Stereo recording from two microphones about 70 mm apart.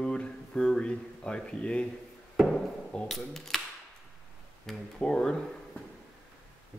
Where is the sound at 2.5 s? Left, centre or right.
Centre.